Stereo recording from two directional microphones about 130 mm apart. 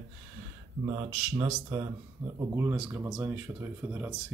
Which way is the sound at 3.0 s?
25° right (ahead or behind).